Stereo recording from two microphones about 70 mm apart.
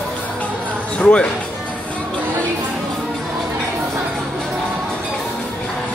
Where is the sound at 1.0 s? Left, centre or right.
Centre.